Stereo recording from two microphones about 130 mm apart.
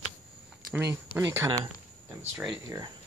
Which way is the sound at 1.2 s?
20° right (ahead or behind).